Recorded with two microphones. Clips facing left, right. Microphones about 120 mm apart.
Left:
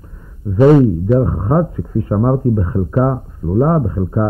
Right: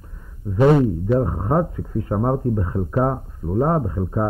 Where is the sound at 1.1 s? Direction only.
30° left (ahead or behind).